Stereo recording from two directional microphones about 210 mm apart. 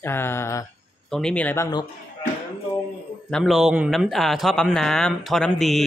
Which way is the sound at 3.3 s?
Centre (ahead or behind).